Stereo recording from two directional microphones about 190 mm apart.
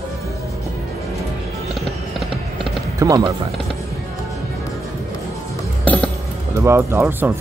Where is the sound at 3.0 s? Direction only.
20° right (ahead or behind).